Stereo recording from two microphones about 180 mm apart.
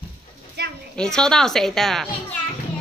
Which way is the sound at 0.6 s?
60° right (ahead or behind).